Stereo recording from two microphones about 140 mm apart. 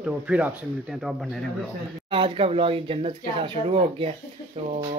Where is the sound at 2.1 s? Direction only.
40° right (ahead or behind).